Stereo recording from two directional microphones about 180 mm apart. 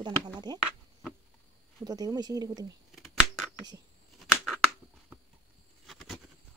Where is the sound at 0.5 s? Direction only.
25° right (ahead or behind).